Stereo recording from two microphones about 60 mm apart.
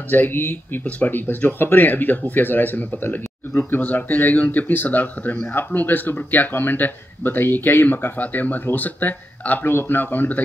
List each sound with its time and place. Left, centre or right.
0.1 s speech: left
0.8 s speech: left